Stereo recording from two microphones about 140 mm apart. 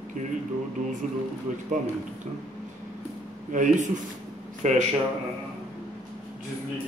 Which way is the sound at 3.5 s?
65° right (ahead or behind).